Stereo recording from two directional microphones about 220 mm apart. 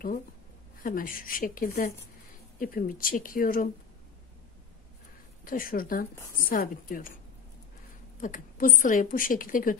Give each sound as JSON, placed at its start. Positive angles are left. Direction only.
{"t": 0.8, "sound": "a woman's voice", "side_deg": 40}
{"t": 5.4, "sound": "a woman's voice", "side_deg": 40}
{"t": 8.2, "sound": "a woman's voice", "side_deg": 40}